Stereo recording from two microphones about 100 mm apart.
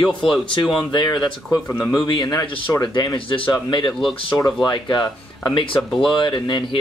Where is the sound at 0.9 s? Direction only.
50° left (ahead or behind).